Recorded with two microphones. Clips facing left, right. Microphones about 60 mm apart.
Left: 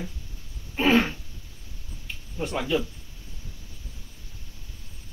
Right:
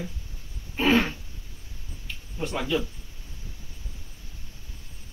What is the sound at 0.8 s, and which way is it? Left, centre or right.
Throat clearing, left.